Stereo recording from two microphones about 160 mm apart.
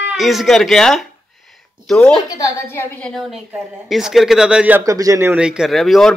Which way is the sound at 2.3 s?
20° left (ahead or behind).